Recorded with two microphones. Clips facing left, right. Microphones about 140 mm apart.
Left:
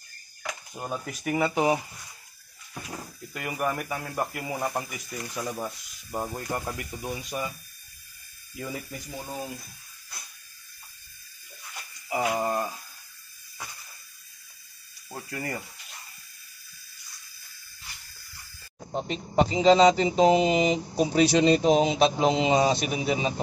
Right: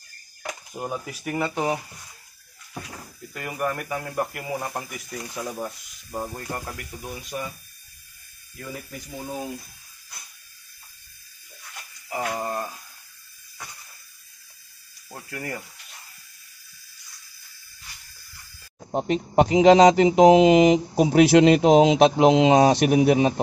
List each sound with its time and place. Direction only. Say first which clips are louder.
1.0 s speech: left 5 dB; centre (ahead or behind)
3.3 s speech: right 1 dB; 5° left (ahead or behind)
6.5 s speech: left 2 dB; 15° left (ahead or behind)
12.1 s a sound: left 2 dB; 15° left (ahead or behind)
15.2 s speech: right 1 dB; centre (ahead or behind)
18.9 s speech: right 7 dB; 60° right (ahead or behind)